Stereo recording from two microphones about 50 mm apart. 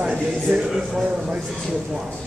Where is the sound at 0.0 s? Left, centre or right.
Right.